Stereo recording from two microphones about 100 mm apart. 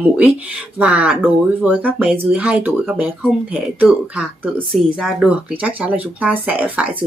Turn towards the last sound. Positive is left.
turn(degrees=-15)  # may be behind; listen again after turning